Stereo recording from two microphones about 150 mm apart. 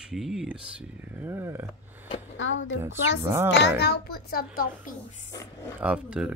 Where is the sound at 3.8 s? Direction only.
90° left; by 5.3 s 70° left (ahead or behind).